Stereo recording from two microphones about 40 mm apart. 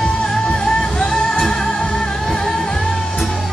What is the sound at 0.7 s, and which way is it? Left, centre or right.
Music, centre.